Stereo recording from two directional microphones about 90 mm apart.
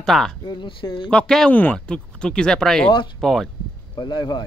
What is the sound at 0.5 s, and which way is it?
Speech, 65° left (ahead or behind).